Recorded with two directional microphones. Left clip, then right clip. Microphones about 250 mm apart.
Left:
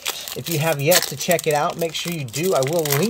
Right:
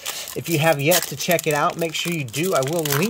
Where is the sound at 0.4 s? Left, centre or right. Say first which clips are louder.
Right 4 dB; centre.